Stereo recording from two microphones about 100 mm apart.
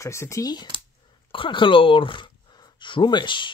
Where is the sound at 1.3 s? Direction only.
60° left (ahead or behind).